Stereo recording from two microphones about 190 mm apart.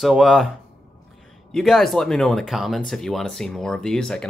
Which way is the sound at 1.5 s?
Centre (ahead or behind).